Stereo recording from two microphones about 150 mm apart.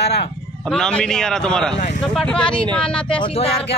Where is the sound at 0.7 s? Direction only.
5° left (ahead or behind).